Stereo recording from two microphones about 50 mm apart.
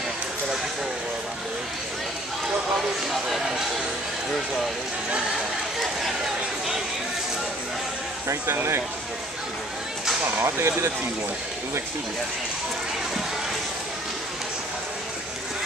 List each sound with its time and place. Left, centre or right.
3.1 s speech: centre
10.4 s speech: right